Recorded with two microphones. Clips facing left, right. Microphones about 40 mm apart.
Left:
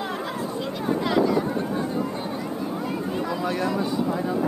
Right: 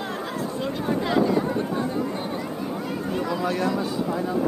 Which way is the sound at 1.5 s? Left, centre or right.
Right.